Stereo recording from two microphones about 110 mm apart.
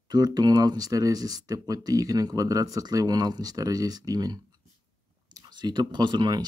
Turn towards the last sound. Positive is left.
turn(degrees=-40)  # may be behind; listen again after turning